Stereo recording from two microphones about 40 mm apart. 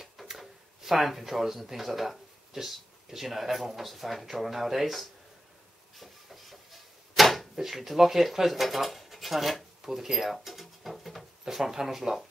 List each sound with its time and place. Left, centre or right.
0.0 s speech: centre
5.9 s drawer open or close: centre
11.4 s speech: centre